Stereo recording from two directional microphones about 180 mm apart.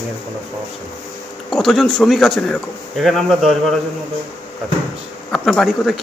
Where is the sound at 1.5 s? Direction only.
Centre (ahead or behind).